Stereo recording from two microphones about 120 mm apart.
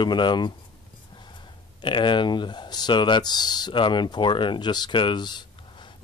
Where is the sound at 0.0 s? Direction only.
40° left (ahead or behind).